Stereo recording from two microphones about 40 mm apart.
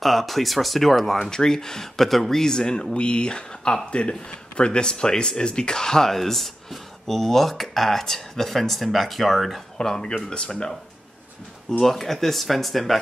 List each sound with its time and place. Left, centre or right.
0.0 s speech: centre
9.8 s speech: centre
11.8 s speech: centre